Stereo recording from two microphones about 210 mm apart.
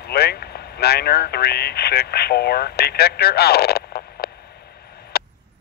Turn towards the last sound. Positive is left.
turn(degrees=45)  # may be behind; listen again after turning